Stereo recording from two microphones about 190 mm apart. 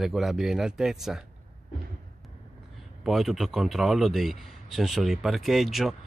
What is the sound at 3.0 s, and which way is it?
Speech, centre (ahead or behind).